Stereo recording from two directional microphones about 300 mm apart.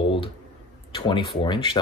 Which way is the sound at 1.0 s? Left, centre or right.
Centre.